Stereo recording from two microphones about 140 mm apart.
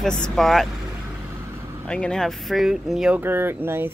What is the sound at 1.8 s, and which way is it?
Speech, 5° left (ahead or behind).